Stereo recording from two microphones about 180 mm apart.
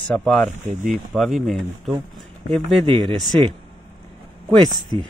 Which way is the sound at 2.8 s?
25° right (ahead or behind).